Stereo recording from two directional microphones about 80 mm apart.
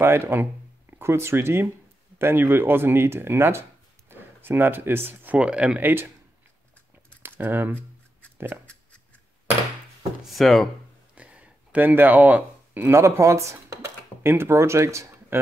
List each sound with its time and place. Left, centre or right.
0.0 s speech: right; by 5.8 s centre
5.8 s speech: right
7.2 s speech: right
10.2 s speech: centre
11.1 s a sound: centre
12.9 s speech: right